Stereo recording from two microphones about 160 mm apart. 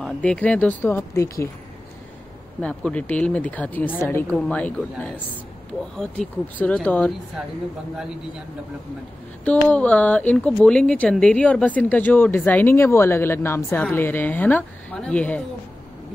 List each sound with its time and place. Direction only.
0.0 s speech: 5° left (ahead or behind)
2.6 s speech: 5° left (ahead or behind)
9.4 s speech: 10° left (ahead or behind)